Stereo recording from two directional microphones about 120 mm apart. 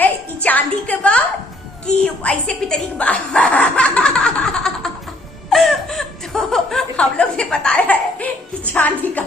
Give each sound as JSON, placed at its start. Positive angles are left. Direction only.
{"t": 0.0, "sound": "music", "side_deg": 15}
{"t": 2.2, "sound": "snicker", "side_deg": 10}
{"t": 5.5, "sound": "laughter", "side_deg": 0}
{"t": 8.7, "sound": "a woman's voice", "side_deg": 15}